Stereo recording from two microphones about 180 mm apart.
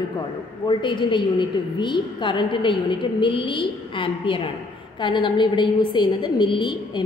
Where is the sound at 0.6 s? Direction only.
25° left (ahead or behind).